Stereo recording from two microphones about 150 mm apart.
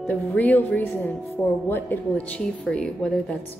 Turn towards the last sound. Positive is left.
turn(degrees=5)  # may be behind; listen again after turning